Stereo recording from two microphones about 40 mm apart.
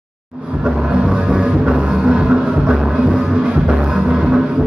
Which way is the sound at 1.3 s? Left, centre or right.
Centre.